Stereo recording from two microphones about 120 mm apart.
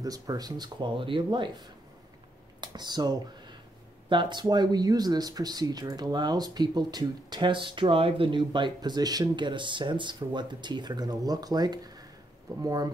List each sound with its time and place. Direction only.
0.0 s speech: 30° right (ahead or behind)
2.6 s speech: 35° right (ahead or behind)